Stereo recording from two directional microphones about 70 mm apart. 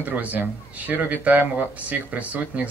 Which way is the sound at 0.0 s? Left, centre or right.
Right.